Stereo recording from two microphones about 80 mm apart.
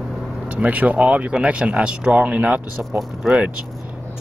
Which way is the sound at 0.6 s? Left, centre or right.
Centre.